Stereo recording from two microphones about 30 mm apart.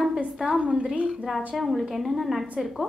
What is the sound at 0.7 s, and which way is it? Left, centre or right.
Speech, right.